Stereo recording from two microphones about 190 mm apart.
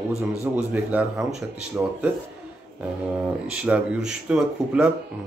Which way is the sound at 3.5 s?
5° right (ahead or behind).